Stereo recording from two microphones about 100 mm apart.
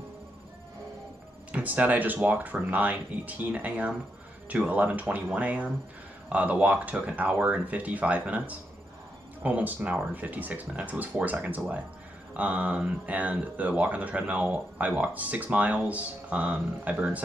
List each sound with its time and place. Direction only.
1.5 s speech: 15° right (ahead or behind)